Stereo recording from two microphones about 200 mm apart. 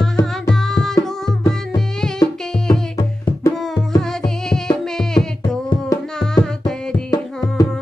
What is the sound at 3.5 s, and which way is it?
Music, centre (ahead or behind).